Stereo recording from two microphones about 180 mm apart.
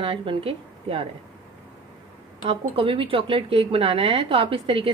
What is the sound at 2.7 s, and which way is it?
A woman's voice, 30° right (ahead or behind).